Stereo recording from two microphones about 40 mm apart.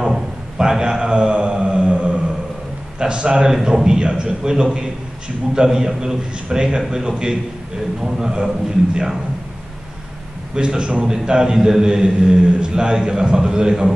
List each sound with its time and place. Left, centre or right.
0.0 s a sound: centre
3.0 s a man's voice: right
10.5 s a man's voice: right